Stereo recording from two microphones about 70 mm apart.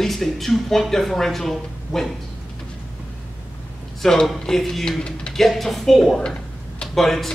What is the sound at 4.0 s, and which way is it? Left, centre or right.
Speech, centre.